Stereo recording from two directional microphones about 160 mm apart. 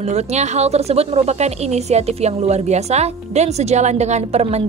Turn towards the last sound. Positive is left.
turn(degrees=-40)  # may be behind; listen again after turning